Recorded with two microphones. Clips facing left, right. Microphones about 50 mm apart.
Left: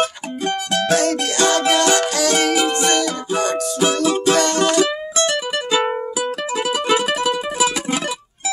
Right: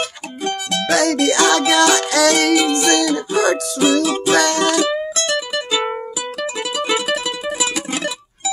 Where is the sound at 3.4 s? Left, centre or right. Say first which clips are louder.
Right 2 dB; right.